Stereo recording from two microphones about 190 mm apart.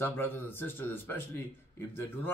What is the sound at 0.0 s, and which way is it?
A man's voice, 10° left (ahead or behind).